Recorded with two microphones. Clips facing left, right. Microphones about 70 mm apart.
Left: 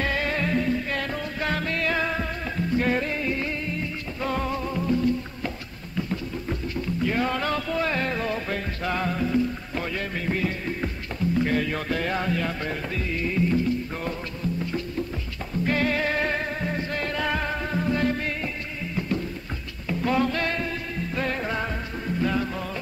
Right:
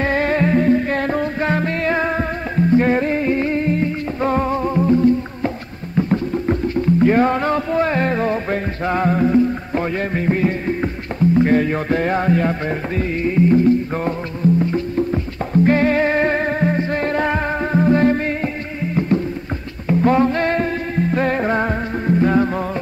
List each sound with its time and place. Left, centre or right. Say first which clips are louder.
0.0 s music: right 9 dB; right